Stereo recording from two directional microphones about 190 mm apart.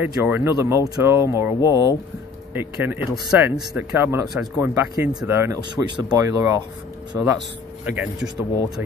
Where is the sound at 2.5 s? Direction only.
10° right (ahead or behind).